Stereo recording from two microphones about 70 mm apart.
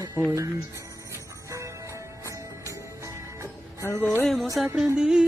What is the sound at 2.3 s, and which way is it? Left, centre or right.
Music, right.